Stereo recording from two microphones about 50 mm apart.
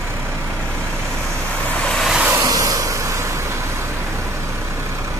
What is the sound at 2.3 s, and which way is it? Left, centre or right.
Vehicle, right.